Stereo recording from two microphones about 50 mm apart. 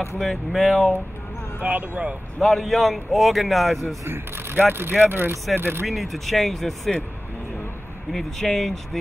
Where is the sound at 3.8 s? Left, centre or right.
Right.